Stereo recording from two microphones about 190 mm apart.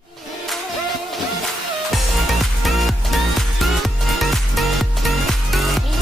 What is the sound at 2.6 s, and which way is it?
Music, centre (ahead or behind).